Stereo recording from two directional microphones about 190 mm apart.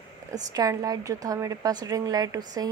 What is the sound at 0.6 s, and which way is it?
A woman's voice, 20° right (ahead or behind).